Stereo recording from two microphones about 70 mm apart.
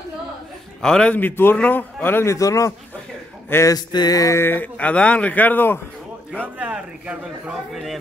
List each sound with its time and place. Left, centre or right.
0.8 s speech: centre
1.1 s speech: left
2.2 s a man's voice: left
3.6 s a sound: left
4.2 s a man's voice: left
4.7 s speech: centre
6.6 s speech: centre
7.7 s speech: centre